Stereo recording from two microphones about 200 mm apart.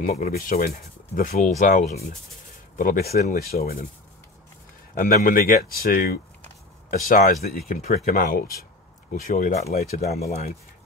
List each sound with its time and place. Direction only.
0.0 s speech: 45° left (ahead or behind)
4.9 s speech: 45° left (ahead or behind)